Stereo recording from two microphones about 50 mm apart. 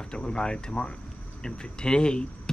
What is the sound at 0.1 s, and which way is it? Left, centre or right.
Speech, centre.